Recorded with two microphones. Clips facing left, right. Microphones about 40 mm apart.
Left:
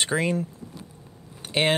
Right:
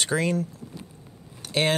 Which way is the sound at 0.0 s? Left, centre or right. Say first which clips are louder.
Even; left.